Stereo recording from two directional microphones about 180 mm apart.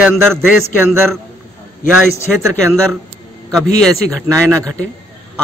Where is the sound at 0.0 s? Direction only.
10° right (ahead or behind).